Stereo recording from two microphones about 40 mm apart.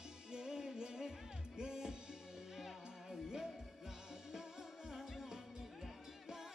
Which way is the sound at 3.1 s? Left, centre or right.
Centre.